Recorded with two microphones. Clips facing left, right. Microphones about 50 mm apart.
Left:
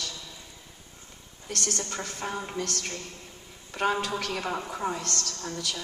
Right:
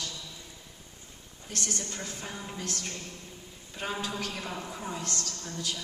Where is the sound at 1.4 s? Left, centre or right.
Left.